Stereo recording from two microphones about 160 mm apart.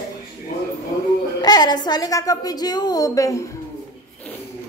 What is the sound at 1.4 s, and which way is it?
A woman's voice, 25° left (ahead or behind).